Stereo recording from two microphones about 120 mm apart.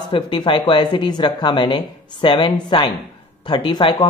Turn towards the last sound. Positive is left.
turn(degrees=45)  # may be behind; listen again after turning